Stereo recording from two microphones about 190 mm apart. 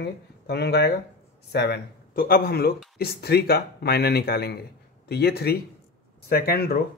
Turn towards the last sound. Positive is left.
turn(degrees=55)  # may be behind; listen again after turning